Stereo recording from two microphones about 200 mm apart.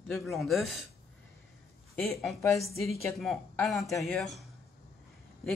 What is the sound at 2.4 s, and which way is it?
Speech, 15° left (ahead or behind).